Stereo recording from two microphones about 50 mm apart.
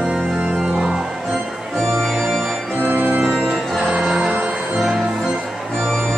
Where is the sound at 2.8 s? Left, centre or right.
Right.